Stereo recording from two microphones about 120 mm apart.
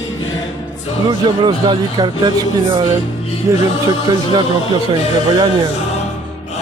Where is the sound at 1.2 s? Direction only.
40° right (ahead or behind).